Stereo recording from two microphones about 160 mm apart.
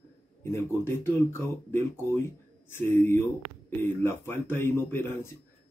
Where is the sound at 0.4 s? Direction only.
15° left (ahead or behind).